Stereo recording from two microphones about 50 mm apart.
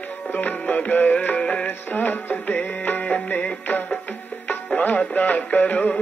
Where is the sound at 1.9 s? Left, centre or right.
Left.